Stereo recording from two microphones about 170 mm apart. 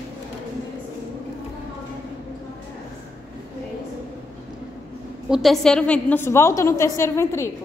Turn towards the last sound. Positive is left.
turn(degrees=15)  # may be behind; listen again after turning